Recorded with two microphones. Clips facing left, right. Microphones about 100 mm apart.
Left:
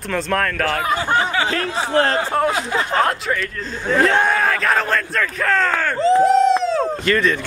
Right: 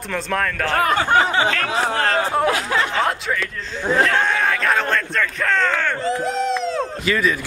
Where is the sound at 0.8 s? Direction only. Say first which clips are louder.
Right 2 dB; 65° right (ahead or behind).